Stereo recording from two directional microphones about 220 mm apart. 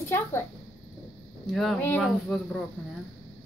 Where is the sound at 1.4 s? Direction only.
Centre (ahead or behind).